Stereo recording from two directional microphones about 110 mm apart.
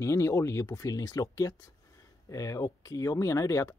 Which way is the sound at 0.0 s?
25° left (ahead or behind).